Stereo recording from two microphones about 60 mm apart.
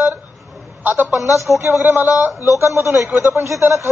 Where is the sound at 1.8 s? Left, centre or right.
Right.